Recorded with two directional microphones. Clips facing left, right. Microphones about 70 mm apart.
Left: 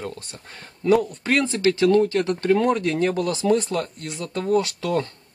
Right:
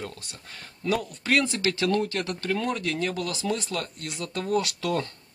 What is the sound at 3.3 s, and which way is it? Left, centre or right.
Speech, left.